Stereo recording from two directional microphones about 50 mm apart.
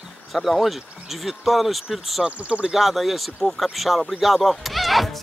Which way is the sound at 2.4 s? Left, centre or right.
Right.